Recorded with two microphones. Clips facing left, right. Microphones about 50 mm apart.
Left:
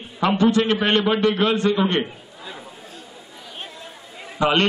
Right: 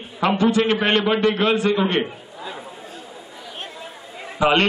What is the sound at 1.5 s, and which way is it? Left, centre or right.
A man's voice, centre.